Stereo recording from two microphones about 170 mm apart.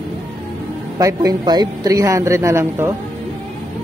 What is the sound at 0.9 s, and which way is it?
A man's voice, 20° right (ahead or behind).